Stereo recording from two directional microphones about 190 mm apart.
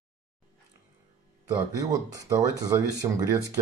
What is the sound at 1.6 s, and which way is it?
Speech, 20° right (ahead or behind).